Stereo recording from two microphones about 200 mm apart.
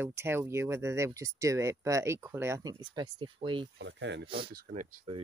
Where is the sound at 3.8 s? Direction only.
60° right (ahead or behind).